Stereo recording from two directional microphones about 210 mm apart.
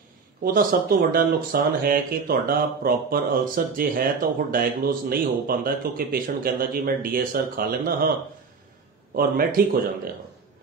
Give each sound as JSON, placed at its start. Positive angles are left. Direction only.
{"t": 0.4, "sound": "speech", "side_deg": -40}
{"t": 9.1, "sound": "speech", "side_deg": -45}